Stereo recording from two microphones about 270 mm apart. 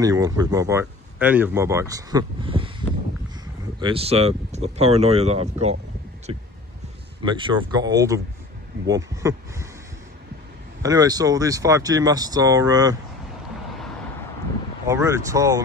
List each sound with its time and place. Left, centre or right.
0.0 s speech: centre
3.8 s speech: right
10.8 s speech: centre
14.9 s speech: centre